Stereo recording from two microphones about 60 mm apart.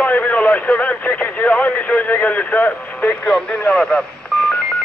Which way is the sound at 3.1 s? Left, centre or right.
Centre.